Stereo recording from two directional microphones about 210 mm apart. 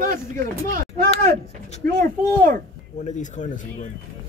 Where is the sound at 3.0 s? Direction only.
35° left (ahead or behind).